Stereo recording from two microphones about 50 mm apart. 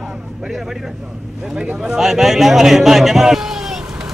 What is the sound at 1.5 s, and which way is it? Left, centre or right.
Speech, right.